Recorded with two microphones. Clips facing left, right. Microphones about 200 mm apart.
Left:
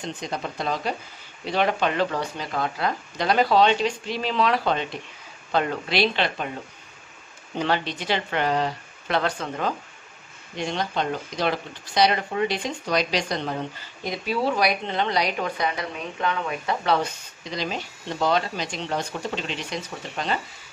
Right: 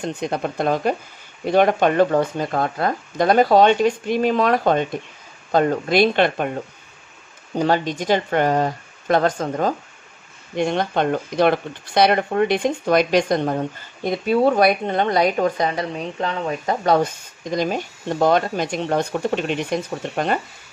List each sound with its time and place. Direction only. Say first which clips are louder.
0.0 s speech: right 7 dB; 55° right (ahead or behind)
7.5 s speech: right 6 dB; 45° right (ahead or behind)
10.5 s speech: right 7 dB; 55° right (ahead or behind)